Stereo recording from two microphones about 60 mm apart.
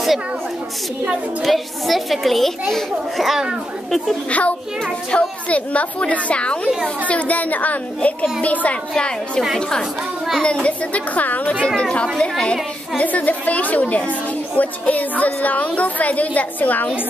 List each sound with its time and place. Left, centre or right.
1.4 s a woman's voice: centre
4.3 s a woman's voice: left
11.6 s a woman's voice: centre